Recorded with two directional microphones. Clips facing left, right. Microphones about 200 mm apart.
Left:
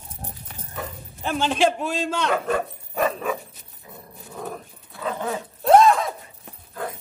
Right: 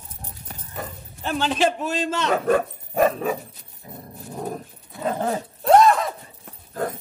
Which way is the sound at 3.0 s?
35° right (ahead or behind).